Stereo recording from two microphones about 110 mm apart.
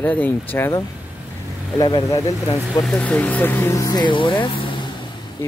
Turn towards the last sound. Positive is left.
turn(degrees=50)  # may be behind; listen again after turning